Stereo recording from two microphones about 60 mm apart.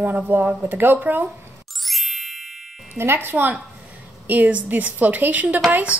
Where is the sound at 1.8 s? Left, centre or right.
Centre.